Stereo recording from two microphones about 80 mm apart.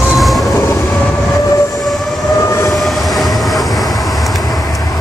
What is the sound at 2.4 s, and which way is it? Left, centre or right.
Train, left.